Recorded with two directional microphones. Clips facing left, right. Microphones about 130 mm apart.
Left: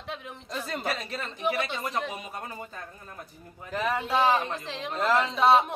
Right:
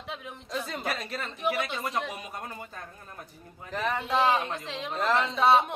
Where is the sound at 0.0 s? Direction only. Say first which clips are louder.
Left 1 dB; centre (ahead or behind).